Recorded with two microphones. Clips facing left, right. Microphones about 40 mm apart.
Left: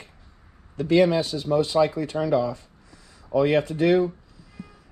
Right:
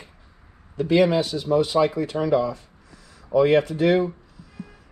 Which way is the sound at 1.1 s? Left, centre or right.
Right.